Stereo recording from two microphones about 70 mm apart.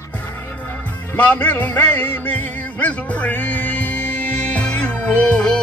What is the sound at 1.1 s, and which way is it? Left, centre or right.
Music, left.